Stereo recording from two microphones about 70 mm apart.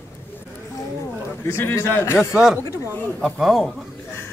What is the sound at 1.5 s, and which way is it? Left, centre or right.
Speech, left.